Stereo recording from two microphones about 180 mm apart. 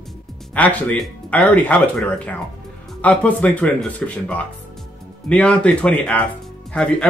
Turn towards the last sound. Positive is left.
turn(degrees=5)  # may be behind; listen again after turning